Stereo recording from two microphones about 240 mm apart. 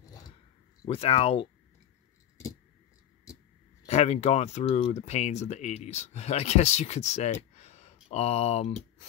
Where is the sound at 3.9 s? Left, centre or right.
Left.